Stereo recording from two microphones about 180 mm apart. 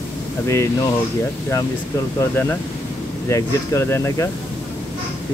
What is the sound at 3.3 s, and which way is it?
Speech, 15° left (ahead or behind).